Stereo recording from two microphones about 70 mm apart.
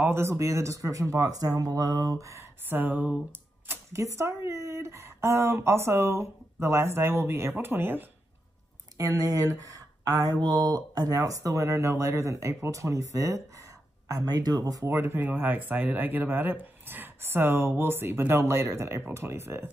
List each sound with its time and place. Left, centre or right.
0.0 s speech: right
2.7 s speech: right
3.3 s typewriter: right
3.9 s speech: right
8.9 s speech: right
14.9 s speech: right